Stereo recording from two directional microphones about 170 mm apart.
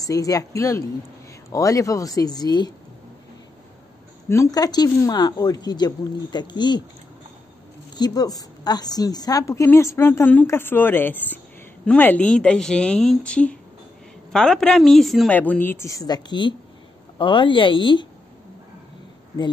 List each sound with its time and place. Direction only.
0.0 s a woman's voice: 20° left (ahead or behind)
4.3 s a woman's voice: 20° left (ahead or behind)
7.9 s a woman's voice: 25° left (ahead or behind)